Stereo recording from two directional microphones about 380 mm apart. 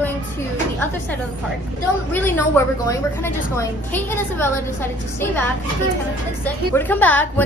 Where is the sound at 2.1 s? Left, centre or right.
Centre.